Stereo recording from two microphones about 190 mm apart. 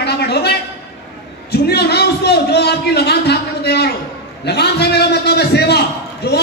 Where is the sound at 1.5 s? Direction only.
55° left (ahead or behind).